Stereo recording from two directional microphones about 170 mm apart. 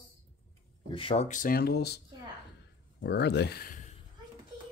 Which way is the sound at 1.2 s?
55° left (ahead or behind).